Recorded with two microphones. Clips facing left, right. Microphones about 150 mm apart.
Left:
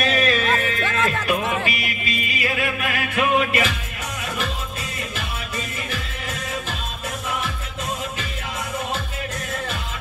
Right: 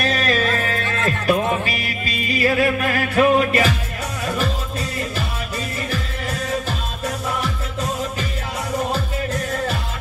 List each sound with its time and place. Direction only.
0.0 s music: 40° right (ahead or behind)
8.9 s music: 40° right (ahead or behind)